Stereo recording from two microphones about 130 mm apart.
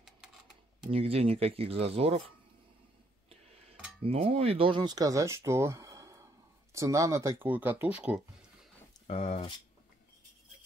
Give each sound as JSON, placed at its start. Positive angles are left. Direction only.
{"t": 0.8, "sound": "speech", "side_deg": -50}
{"t": 3.3, "sound": "a sound", "side_deg": -50}
{"t": 4.0, "sound": "speech", "side_deg": -50}
{"t": 9.0, "sound": "speech", "side_deg": 55}